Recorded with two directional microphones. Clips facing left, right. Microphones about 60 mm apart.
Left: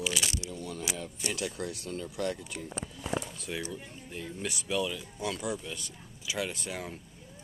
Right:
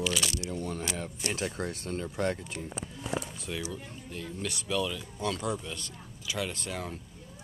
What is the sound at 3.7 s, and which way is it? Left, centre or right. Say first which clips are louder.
Speech: right 1 dB; centre.